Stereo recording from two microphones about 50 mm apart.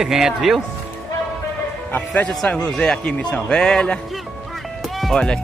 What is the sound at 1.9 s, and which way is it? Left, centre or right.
Speech, left.